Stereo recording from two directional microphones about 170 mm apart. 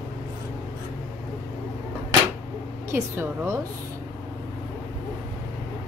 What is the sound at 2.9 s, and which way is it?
Speech, 15° right (ahead or behind).